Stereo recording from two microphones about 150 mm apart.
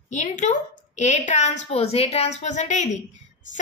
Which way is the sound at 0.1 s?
55° left (ahead or behind).